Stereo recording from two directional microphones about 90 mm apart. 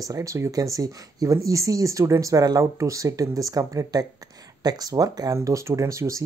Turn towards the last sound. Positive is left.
turn(degrees=-35)  # may be behind; listen again after turning